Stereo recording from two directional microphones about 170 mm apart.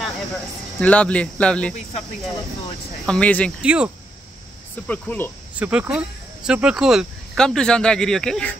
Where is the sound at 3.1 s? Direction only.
10° left (ahead or behind).